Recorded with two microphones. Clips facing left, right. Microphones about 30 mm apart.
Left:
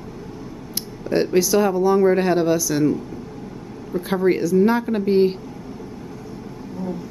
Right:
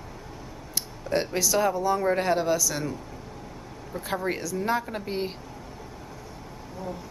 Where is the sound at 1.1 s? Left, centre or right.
Centre.